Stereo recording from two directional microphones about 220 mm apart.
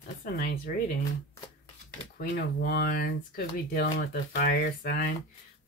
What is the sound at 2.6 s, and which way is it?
Speech, 45° left (ahead or behind).